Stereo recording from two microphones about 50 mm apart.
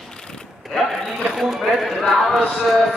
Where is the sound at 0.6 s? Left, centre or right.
Centre.